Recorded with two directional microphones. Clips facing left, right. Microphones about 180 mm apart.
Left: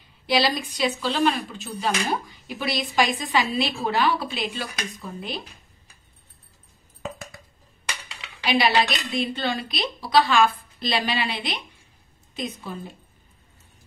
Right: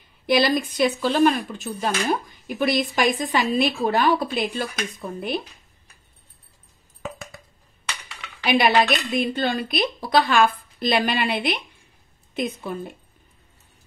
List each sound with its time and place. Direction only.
0.3 s speech: 50° right (ahead or behind)
8.5 s a woman's voice: 50° right (ahead or behind)